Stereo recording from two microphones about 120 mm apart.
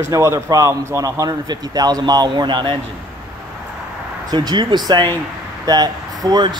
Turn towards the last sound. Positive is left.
turn(degrees=-35)  # may be behind; listen again after turning